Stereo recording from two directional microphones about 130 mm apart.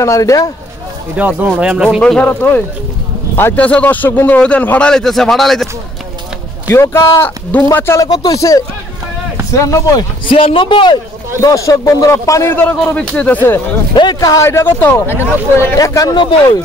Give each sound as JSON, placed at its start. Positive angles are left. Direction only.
{"t": 0.0, "sound": "speech", "side_deg": 25}
{"t": 1.1, "sound": "speech", "side_deg": -15}
{"t": 2.0, "sound": "a man's voice", "side_deg": 10}
{"t": 6.7, "sound": "a man's voice", "side_deg": 20}
{"t": 8.1, "sound": "speech", "side_deg": 30}
{"t": 10.3, "sound": "a man's voice", "side_deg": 45}
{"t": 11.4, "sound": "speech", "side_deg": 25}
{"t": 12.5, "sound": "a man's voice", "side_deg": 10}
{"t": 13.9, "sound": "speech", "side_deg": 30}